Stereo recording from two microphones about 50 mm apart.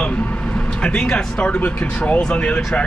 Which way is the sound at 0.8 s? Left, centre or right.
Left.